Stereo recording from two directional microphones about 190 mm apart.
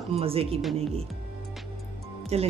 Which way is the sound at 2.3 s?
35° right (ahead or behind).